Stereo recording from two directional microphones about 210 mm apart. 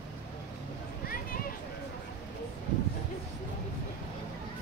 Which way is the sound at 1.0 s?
45° left (ahead or behind).